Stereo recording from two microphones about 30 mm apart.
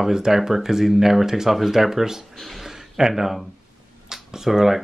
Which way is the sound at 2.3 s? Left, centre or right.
Centre.